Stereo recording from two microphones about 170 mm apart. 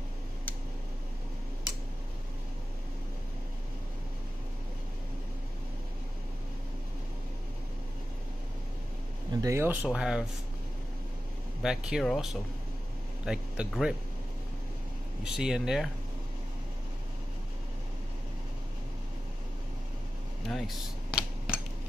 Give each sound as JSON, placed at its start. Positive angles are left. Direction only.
{"t": 9.3, "sound": "speech", "side_deg": -20}
{"t": 9.8, "sound": "speech", "side_deg": -5}
{"t": 11.6, "sound": "speech", "side_deg": -5}
{"t": 15.2, "sound": "speech", "side_deg": -5}
{"t": 20.4, "sound": "cutlery", "side_deg": 0}